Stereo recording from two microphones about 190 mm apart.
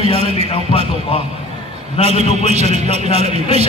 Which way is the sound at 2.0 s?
35° right (ahead or behind).